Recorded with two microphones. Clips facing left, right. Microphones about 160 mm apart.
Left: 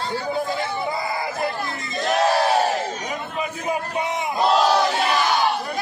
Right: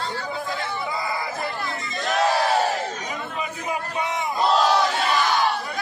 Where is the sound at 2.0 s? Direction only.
20° left (ahead or behind).